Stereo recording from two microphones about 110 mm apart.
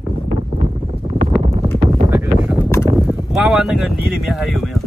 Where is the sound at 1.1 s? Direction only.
90° right.